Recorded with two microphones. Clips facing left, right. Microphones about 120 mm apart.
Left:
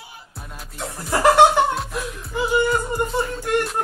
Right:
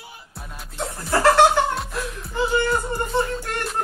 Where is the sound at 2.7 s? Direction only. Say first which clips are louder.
Left 2 dB; 5° left (ahead or behind).